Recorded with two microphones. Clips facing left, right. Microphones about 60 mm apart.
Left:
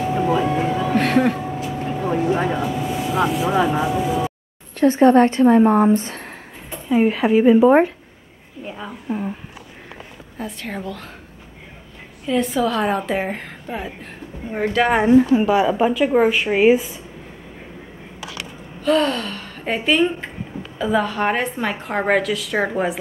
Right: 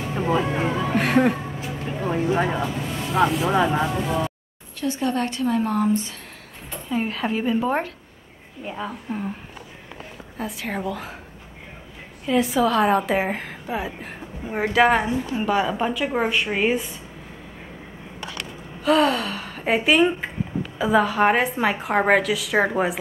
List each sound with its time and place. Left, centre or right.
0.0 s a woman's voice: centre
1.9 s vehicle: centre
2.3 s a woman's voice: centre
4.7 s a woman's voice: left
6.7 s speech: centre
8.6 s a woman's voice: centre
10.3 s a woman's voice: centre
12.3 s a woman's voice: centre
15.4 s a woman's voice: centre
18.8 s a woman's voice: centre